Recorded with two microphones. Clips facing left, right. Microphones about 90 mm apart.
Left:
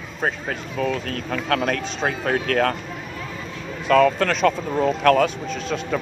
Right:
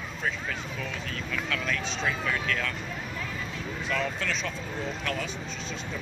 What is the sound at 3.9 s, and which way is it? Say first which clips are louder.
Speech: left 15 dB; 55° left (ahead or behind).